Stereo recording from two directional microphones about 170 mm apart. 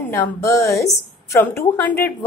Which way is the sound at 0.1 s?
15° left (ahead or behind).